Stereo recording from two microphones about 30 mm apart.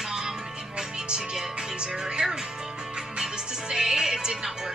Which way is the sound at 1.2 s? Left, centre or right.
Right.